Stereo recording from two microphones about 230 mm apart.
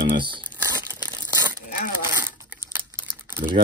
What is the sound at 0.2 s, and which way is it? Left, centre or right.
Crumpling, right.